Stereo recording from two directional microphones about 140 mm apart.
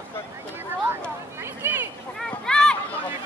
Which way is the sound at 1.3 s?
15° right (ahead or behind).